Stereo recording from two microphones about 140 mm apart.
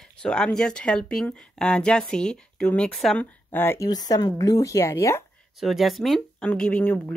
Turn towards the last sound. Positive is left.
turn(degrees=10)  # may be behind; listen again after turning